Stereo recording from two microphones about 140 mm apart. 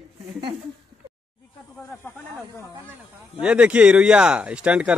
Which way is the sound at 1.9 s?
15° left (ahead or behind).